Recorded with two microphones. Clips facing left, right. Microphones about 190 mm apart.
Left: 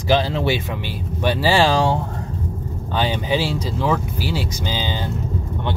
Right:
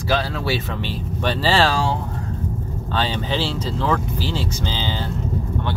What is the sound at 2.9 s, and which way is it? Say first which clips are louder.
Speech: left 3 dB; 10° left (ahead or behind).